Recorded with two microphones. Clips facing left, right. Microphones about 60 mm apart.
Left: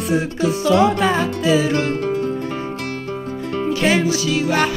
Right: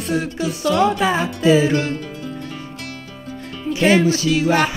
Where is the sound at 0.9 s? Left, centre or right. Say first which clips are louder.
Left 1 dB; centre.